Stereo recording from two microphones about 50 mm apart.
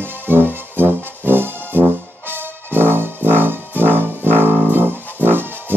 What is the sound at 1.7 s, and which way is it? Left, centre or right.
Brass instrument, right.